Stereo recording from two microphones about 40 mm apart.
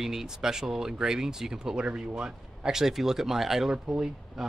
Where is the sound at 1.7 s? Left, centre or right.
Right.